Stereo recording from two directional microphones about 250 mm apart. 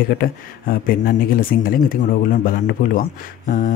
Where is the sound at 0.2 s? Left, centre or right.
Left.